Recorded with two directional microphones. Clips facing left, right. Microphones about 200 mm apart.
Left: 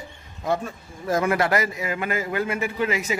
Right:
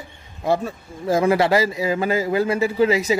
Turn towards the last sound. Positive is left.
turn(degrees=-35)  # may be behind; listen again after turning